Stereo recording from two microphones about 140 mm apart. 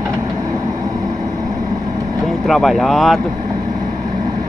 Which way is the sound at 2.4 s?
Centre (ahead or behind).